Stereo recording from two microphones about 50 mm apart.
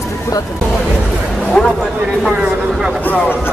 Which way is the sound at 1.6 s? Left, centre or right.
Centre.